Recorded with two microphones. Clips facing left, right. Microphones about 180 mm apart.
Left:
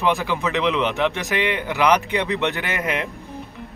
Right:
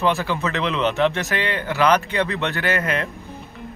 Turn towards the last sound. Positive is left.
turn(degrees=15)  # may be behind; listen again after turning